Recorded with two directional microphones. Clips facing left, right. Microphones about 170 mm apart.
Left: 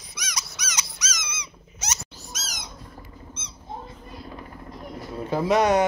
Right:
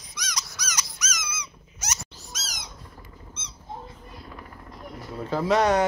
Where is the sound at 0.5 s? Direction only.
25° left (ahead or behind).